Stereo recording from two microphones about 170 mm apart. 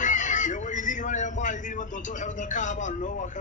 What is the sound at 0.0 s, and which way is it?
Chicken, 45° left (ahead or behind).